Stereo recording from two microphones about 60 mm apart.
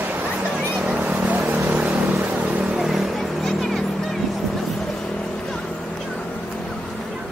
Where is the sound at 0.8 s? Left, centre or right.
Right.